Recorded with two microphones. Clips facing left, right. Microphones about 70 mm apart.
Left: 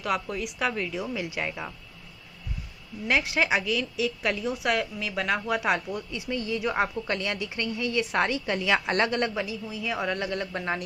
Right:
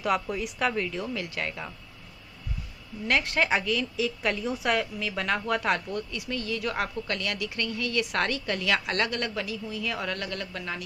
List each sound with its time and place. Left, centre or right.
0.0 s a woman's voice: centre
3.1 s a woman's voice: centre; by 10.8 s left